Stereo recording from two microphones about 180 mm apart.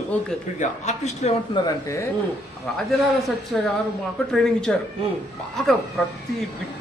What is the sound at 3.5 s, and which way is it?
Speech, 5° left (ahead or behind).